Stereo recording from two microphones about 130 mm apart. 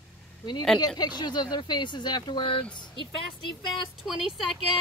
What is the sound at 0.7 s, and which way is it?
Speech, 30° left (ahead or behind).